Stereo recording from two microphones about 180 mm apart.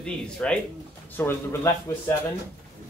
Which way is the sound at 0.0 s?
5° left (ahead or behind).